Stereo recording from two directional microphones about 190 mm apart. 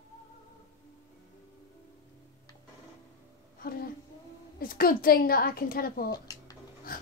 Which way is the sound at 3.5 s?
50° left (ahead or behind).